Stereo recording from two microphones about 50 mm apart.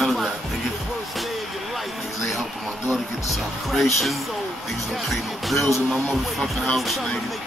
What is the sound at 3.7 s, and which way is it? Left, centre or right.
Music, centre.